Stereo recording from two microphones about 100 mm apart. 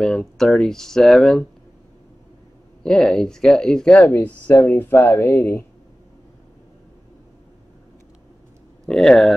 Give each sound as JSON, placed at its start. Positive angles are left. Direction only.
{"t": 0.0, "sound": "speech", "side_deg": 5}
{"t": 2.8, "sound": "speech", "side_deg": 5}
{"t": 8.8, "sound": "speech", "side_deg": 5}